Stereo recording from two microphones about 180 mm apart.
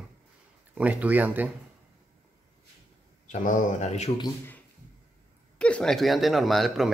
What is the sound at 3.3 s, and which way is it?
Speech, 45° left (ahead or behind).